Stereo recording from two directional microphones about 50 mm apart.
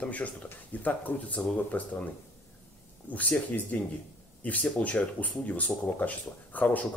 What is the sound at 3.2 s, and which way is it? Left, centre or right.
Speech, left.